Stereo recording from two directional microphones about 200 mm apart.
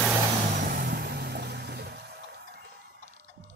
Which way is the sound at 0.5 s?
45° right (ahead or behind).